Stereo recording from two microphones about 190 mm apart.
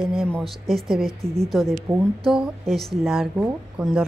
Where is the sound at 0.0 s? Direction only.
Centre (ahead or behind).